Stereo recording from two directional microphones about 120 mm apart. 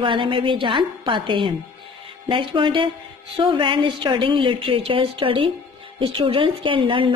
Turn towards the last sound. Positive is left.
turn(degrees=-45)  # may be behind; listen again after turning